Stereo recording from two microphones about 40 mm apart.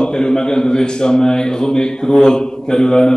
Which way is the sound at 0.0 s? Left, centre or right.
Centre.